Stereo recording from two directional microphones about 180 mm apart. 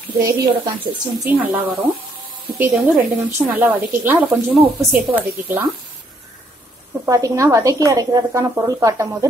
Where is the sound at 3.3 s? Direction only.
10° right (ahead or behind).